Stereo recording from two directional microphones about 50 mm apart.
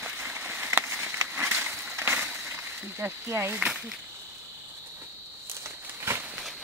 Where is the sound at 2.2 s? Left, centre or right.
Right.